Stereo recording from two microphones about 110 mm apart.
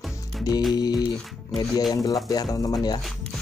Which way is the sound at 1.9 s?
35° left (ahead or behind).